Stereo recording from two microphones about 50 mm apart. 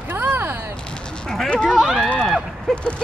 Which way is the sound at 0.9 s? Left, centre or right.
Centre.